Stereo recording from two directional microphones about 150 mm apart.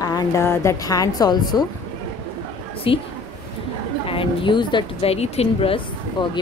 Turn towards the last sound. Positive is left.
turn(degrees=35)  # may be behind; listen again after turning